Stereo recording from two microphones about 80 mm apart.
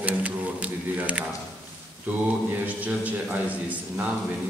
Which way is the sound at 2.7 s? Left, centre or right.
Centre.